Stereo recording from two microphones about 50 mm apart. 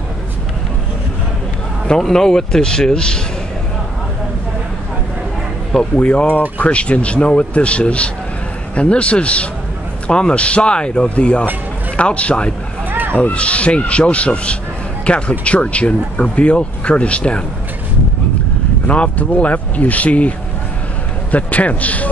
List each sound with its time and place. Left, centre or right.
1.9 s a man's voice: centre
5.8 s speech: left
12.9 s a sound: right
13.2 s speech: left
18.9 s a man's voice: left